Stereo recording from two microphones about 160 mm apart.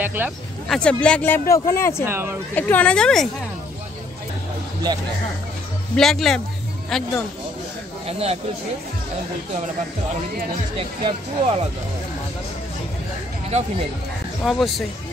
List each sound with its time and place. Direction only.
0.0 s speech: 10° right (ahead or behind)
0.7 s speech: 5° left (ahead or behind)
2.0 s speech: 15° right (ahead or behind)
2.5 s speech: 10° left (ahead or behind)
5.9 s speech: centre (ahead or behind)
8.1 s speech: 40° right (ahead or behind)
10.8 s speech: 35° right (ahead or behind)
13.5 s speech: 45° right (ahead or behind)
14.4 s speech: centre (ahead or behind)